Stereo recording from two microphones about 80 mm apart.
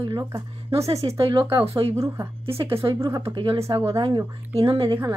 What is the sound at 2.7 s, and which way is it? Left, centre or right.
Speech, right.